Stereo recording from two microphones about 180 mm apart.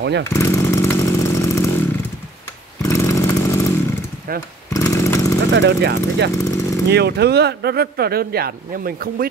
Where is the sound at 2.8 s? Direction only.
15° left (ahead or behind).